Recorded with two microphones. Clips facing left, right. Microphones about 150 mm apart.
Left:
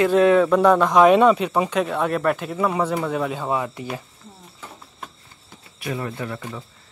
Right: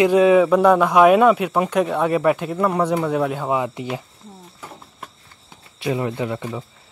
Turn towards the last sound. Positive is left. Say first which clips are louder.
# right 5 dB
turn(degrees=-20)  # may be behind; listen again after turning